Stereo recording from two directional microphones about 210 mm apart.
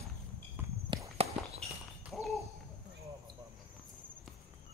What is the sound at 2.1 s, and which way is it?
Hoot, centre (ahead or behind).